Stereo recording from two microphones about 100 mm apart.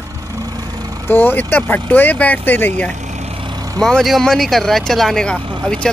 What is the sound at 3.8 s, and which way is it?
Speech, 5° left (ahead or behind).